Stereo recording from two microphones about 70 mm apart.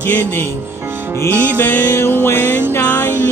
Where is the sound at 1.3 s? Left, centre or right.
Right.